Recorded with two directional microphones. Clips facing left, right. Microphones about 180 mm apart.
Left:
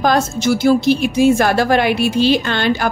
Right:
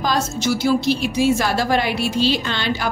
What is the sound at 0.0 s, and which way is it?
A woman's voice, 55° left (ahead or behind).